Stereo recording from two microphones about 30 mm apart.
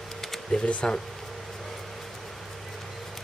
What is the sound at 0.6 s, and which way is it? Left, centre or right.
Speech, left.